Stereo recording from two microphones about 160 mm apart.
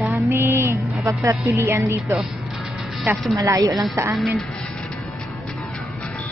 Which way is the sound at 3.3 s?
20° right (ahead or behind).